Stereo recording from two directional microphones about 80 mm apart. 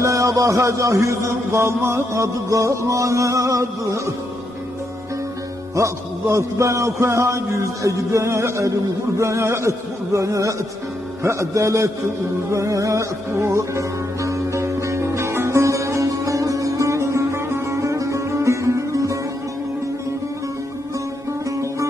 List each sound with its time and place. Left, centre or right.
0.0 s a man's voice: right
5.8 s a man's voice: right
12.4 s music: right